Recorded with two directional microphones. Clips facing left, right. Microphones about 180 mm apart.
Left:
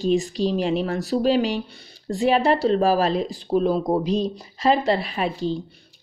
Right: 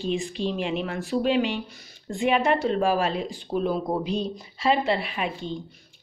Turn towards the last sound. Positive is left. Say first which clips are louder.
# left 6 dB
turn(degrees=35)  # may be behind; listen again after turning